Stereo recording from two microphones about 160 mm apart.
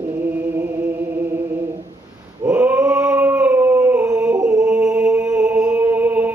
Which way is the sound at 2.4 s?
10° right (ahead or behind).